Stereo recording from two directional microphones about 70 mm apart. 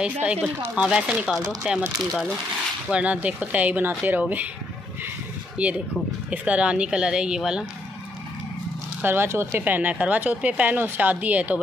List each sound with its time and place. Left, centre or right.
0.0 s speech: centre
2.9 s speech: centre
5.6 s speech: centre
9.0 s speech: right